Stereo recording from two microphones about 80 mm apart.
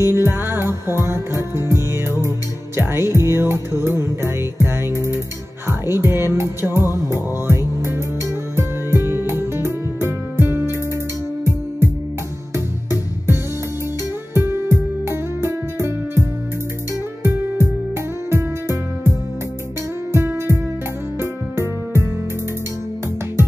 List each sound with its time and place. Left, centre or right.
0.0 s music: right
12.5 s music: right